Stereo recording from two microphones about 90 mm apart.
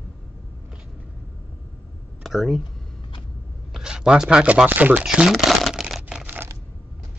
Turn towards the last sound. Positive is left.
turn(degrees=-20)  # may be behind; listen again after turning